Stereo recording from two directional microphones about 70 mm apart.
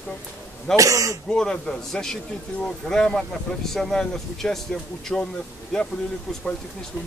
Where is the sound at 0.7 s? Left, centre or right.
Right.